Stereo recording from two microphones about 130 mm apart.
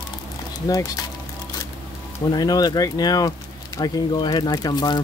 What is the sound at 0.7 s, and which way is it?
Speech, 30° left (ahead or behind).